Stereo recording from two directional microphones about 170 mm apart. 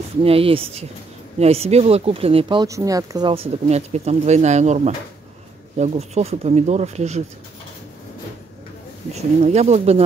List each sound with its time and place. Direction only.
0.2 s speech: 35° right (ahead or behind)
9.1 s speech: 40° right (ahead or behind)